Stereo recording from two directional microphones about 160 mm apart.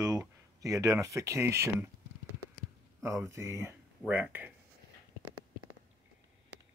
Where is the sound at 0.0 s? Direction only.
20° right (ahead or behind).